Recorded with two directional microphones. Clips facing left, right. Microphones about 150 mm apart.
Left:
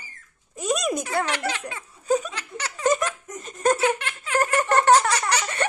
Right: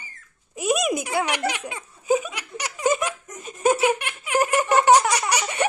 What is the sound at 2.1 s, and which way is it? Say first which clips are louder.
Giggle: right 1 dB; 10° right (ahead or behind).